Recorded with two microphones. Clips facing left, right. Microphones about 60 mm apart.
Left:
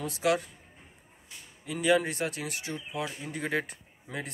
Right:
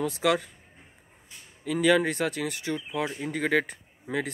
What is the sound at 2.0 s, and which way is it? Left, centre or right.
Speech, right.